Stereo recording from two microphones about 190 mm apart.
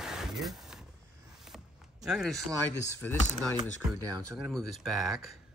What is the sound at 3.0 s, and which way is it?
Speech, 10° left (ahead or behind).